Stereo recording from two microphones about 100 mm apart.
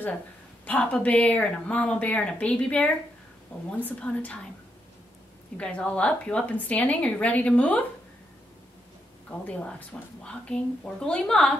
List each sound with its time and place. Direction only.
0.7 s a woman's voice: 15° left (ahead or behind)
5.6 s a woman's voice: 10° left (ahead or behind)
9.4 s a woman's voice: 15° left (ahead or behind)